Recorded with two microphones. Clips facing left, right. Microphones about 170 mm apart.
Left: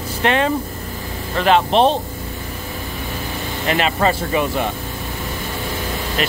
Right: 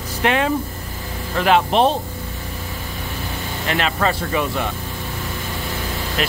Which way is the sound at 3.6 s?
5° left (ahead or behind).